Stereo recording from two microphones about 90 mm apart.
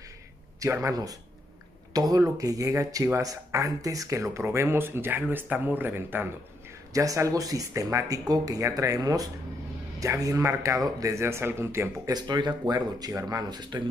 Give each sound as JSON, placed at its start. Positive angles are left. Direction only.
{"t": 0.6, "sound": "speech", "side_deg": -35}
{"t": 6.9, "sound": "speech", "side_deg": -35}
{"t": 12.1, "sound": "speech", "side_deg": -50}
{"t": 13.1, "sound": "speech", "side_deg": -40}